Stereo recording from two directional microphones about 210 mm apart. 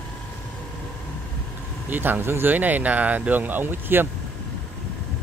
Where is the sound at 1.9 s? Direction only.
10° right (ahead or behind).